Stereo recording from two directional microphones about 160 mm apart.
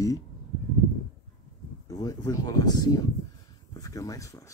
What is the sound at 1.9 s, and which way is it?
Speech, 20° left (ahead or behind).